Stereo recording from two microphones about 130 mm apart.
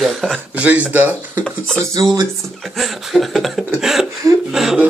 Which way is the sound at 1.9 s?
25° right (ahead or behind).